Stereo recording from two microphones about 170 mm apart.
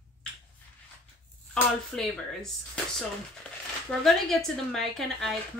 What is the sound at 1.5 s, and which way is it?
Speech, 5° left (ahead or behind).